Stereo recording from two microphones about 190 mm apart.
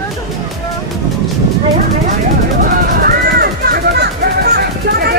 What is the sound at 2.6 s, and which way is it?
Music, 50° right (ahead or behind).